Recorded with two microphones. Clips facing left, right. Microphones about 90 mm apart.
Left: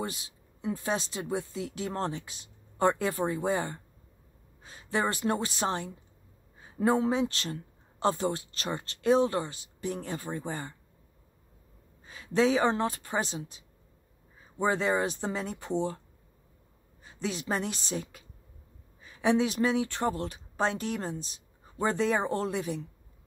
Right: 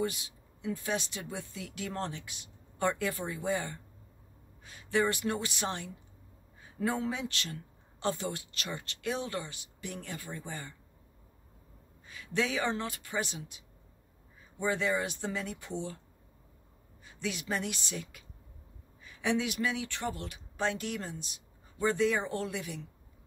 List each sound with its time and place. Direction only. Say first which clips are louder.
0.0 s a woman's voice: right 2 dB; 30° left (ahead or behind)
12.1 s speech: left 7 dB; 30° left (ahead or behind)
14.6 s speech: left 4 dB; 35° left (ahead or behind)
17.0 s a woman's voice: left 3 dB; 30° left (ahead or behind)